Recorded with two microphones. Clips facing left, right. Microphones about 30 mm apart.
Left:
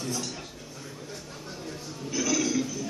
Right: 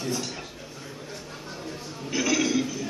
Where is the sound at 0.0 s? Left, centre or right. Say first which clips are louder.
Right 3 dB; centre.